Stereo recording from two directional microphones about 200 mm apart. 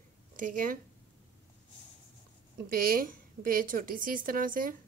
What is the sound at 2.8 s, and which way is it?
Speech, 45° right (ahead or behind).